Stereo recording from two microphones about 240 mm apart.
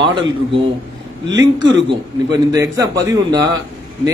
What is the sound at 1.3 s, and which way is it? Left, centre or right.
Speech, right.